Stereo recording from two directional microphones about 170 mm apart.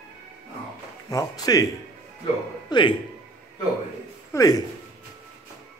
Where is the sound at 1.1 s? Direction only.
20° left (ahead or behind).